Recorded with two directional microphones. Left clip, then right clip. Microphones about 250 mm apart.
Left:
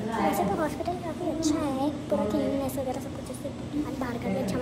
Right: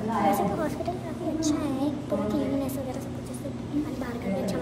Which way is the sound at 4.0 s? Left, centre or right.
Centre.